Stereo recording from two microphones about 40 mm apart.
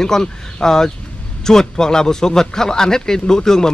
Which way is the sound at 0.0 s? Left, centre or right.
Centre.